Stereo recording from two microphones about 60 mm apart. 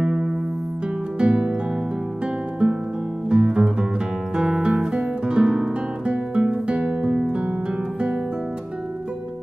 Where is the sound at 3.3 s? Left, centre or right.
Centre.